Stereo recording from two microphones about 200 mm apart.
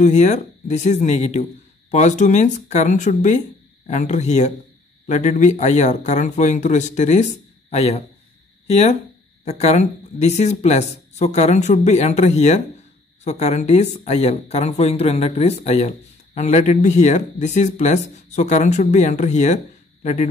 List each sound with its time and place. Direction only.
0.0 s speech: 35° left (ahead or behind)